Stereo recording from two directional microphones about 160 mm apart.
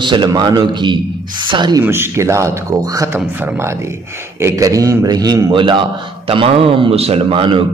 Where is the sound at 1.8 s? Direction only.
15° right (ahead or behind).